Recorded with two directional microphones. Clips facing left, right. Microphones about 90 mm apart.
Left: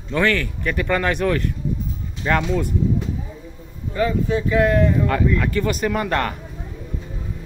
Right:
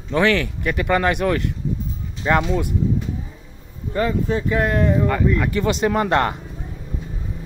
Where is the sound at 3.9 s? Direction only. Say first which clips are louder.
Even; 40° right (ahead or behind).